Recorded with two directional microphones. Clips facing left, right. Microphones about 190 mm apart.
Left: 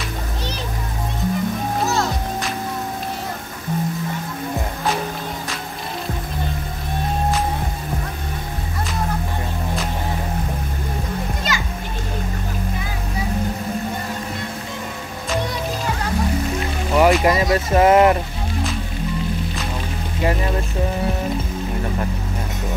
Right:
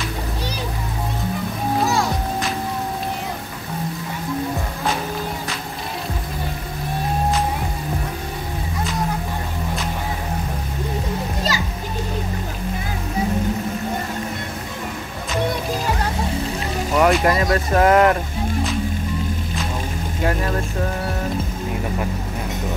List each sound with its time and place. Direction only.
11.5 s music: 35° right (ahead or behind)
17.0 s speech: 5° left (ahead or behind)
20.2 s speech: centre (ahead or behind)